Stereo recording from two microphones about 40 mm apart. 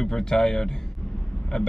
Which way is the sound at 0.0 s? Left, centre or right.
Centre.